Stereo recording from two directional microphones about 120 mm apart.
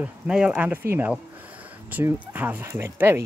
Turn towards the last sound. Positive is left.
turn(degrees=-20)  # may be behind; listen again after turning